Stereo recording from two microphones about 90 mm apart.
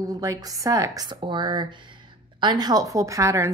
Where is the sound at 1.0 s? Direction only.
60° right (ahead or behind).